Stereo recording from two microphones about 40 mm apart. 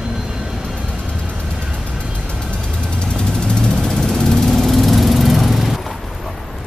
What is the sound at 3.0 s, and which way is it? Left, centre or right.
Vehicle, centre.